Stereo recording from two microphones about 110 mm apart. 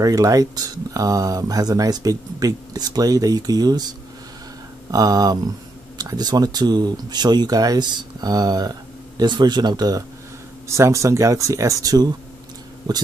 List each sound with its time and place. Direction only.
0.0 s speech: 30° right (ahead or behind)
4.9 s speech: 35° right (ahead or behind)